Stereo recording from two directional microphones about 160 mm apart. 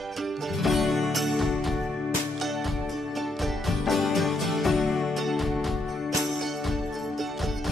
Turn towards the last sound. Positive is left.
turn(degrees=0)  # may be behind; listen again after turning